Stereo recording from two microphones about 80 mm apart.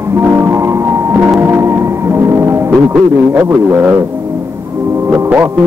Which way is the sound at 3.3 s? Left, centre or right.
Right.